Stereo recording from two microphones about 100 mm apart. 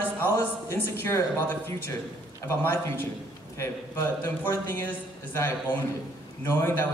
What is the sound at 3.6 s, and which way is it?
A man's voice, 25° left (ahead or behind).